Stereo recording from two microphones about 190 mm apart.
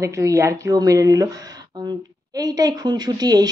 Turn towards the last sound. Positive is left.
turn(degrees=-20)  # may be behind; listen again after turning